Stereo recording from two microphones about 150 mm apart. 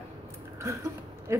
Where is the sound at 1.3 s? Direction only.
20° right (ahead or behind).